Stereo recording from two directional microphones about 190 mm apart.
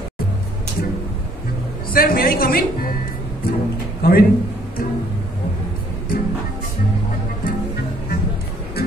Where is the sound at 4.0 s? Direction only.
50° left (ahead or behind).